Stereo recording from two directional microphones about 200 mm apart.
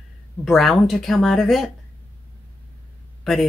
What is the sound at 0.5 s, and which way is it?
Speech, centre (ahead or behind).